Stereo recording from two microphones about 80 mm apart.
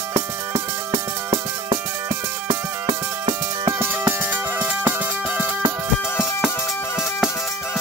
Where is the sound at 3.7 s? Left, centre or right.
Right.